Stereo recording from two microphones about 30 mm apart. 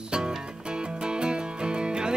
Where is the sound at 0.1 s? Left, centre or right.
Right.